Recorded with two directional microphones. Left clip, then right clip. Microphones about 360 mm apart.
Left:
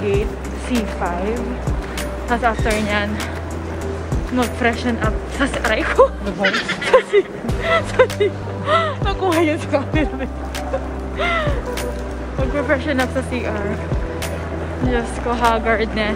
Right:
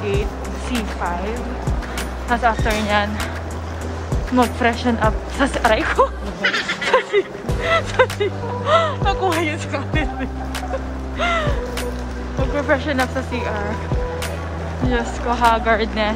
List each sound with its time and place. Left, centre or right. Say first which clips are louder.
0.7 s speech: left 2 dB; centre
4.4 s speech: right 2 dB; centre
11.2 s music: even; centre
12.6 s speech: right 1 dB; centre
14.9 s speech: even; centre